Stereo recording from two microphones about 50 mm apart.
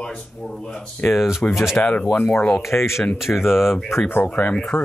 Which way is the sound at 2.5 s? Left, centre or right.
Left.